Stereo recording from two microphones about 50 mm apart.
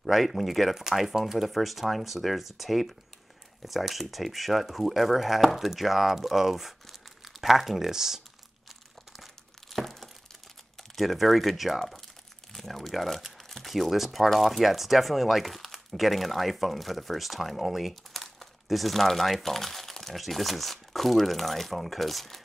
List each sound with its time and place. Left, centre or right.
0.0 s speech: centre
9.2 s crumpling: centre
11.0 s speech: centre